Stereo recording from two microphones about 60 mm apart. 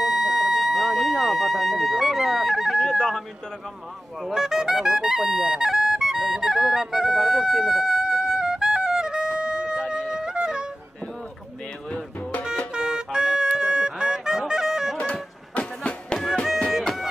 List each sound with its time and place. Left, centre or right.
0.0 s a sound: centre
4.3 s music: centre
11.9 s music: left
12.7 s goose: centre
15.5 s music: centre
16.8 s music: centre